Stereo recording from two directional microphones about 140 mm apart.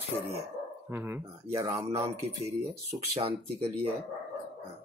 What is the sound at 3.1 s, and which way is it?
Speech, 45° right (ahead or behind).